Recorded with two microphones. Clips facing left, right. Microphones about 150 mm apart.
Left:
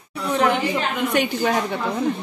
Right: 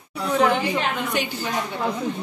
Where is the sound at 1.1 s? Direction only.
60° left (ahead or behind).